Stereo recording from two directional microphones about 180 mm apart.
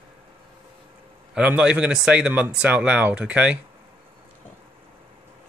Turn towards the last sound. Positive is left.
turn(degrees=-5)  # may be behind; listen again after turning